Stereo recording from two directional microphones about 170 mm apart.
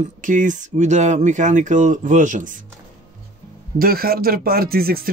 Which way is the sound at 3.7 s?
60° right (ahead or behind).